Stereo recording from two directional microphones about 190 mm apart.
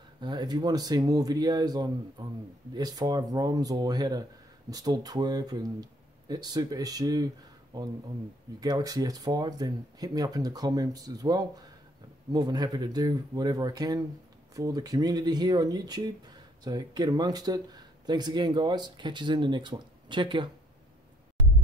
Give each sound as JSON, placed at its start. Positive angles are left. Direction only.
{"t": 0.2, "sound": "speech", "side_deg": -20}